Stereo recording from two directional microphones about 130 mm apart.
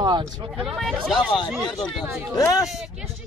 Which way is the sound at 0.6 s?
Centre (ahead or behind).